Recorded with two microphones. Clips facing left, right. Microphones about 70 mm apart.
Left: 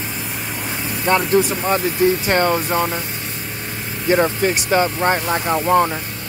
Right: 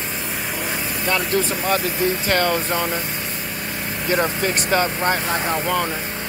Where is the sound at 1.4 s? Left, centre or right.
Centre.